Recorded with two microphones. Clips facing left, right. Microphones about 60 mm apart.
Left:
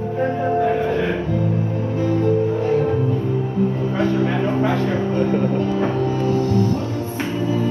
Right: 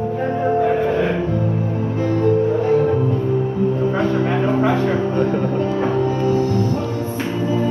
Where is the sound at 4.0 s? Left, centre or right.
Right.